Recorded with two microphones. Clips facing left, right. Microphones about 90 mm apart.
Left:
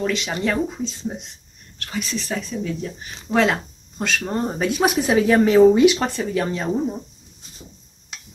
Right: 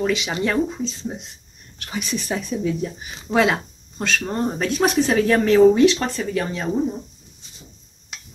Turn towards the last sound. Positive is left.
turn(degrees=5)  # may be behind; listen again after turning